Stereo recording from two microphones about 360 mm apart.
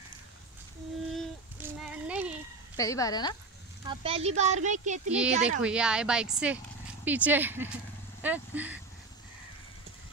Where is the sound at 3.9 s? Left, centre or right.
Centre.